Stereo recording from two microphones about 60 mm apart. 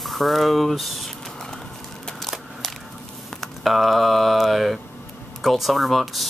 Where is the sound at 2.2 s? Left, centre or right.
Centre.